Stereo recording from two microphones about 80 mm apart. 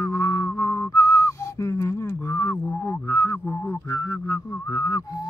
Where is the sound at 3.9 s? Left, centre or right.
Left.